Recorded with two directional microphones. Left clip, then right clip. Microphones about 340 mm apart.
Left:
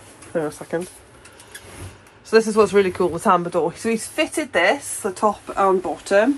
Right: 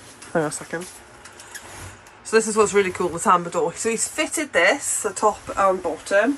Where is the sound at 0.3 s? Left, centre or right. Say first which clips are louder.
Even; centre.